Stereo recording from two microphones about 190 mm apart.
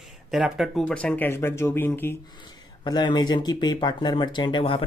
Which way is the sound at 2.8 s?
20° left (ahead or behind).